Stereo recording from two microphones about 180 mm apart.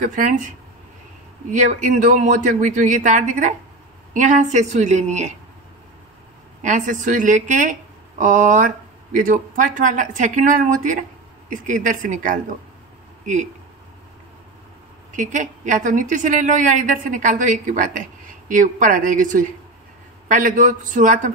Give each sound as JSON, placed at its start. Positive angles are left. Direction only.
{"t": 0.0, "sound": "a woman's voice", "side_deg": -45}
{"t": 6.6, "sound": "a woman's voice", "side_deg": -45}
{"t": 15.1, "sound": "a woman's voice", "side_deg": -45}